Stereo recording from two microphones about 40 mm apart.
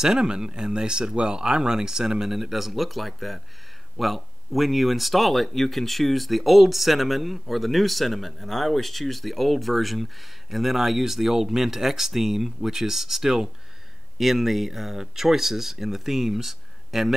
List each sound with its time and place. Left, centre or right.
0.0 s speech: centre